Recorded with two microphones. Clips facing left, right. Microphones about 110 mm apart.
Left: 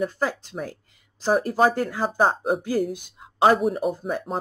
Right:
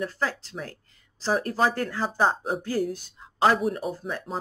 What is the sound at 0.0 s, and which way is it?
Speech, 15° left (ahead or behind).